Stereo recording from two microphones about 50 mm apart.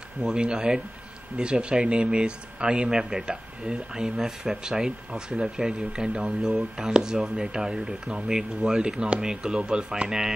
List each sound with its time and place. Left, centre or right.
0.3 s speech: centre